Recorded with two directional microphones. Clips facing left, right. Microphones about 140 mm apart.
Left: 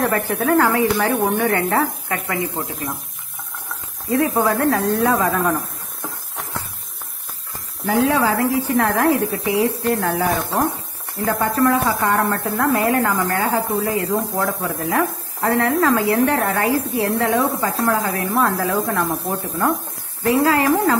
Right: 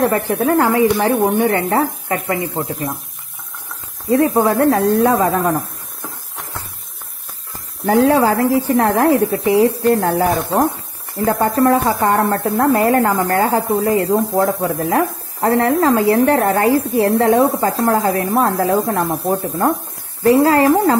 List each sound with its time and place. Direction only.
0.1 s speech: 25° right (ahead or behind)
4.4 s speech: 30° right (ahead or behind)
7.8 s speech: 35° right (ahead or behind)
13.7 s speech: 30° right (ahead or behind)